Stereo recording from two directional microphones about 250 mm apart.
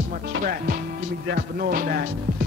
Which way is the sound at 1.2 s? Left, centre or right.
Right.